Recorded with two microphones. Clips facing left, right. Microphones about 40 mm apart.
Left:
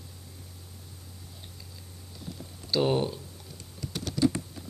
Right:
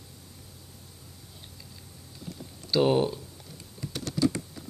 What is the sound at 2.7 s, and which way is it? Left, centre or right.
Speech, centre.